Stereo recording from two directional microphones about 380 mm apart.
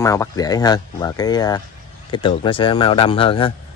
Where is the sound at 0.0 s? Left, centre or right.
Centre.